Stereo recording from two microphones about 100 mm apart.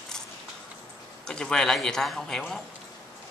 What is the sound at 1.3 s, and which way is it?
A man's voice, 5° left (ahead or behind).